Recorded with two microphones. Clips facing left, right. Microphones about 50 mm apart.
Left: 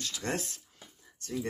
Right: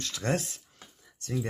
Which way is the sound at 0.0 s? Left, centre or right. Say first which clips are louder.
Right 4 dB; right.